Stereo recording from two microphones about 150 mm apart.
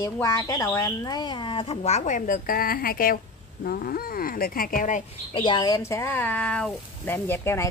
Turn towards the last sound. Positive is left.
turn(degrees=15)  # may be behind; listen again after turning